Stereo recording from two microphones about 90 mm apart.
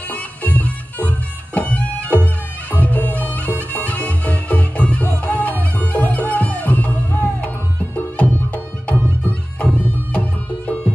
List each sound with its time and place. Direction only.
0.1 s music: 15° left (ahead or behind)
9.6 s music: 15° left (ahead or behind)